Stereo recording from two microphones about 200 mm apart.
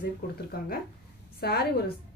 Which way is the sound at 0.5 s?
50° left (ahead or behind).